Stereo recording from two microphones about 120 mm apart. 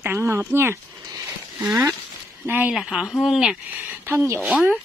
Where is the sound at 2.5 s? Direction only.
15° right (ahead or behind).